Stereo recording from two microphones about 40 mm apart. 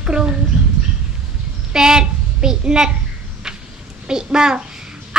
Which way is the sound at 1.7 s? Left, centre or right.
Centre.